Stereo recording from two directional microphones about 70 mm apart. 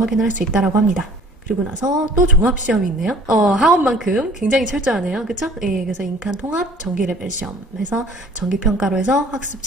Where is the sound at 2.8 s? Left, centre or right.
Centre.